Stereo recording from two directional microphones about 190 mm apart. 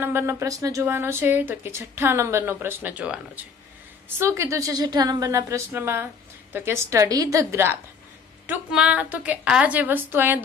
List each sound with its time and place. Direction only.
0.0 s speech: 10° right (ahead or behind)